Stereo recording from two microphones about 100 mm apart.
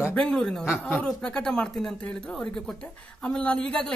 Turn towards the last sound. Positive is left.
turn(degrees=10)  # may be behind; listen again after turning